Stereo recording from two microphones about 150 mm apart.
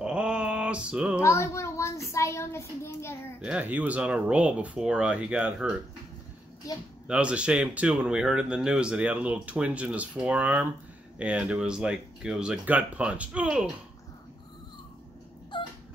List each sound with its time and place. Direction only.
0.0 s mantra: 5° right (ahead or behind)
1.2 s a child's voice: 20° left (ahead or behind)
3.3 s speech: 10° right (ahead or behind)
6.7 s speech: 25° left (ahead or behind)
7.1 s speech: 5° right (ahead or behind)
15.5 s a sound: 30° left (ahead or behind)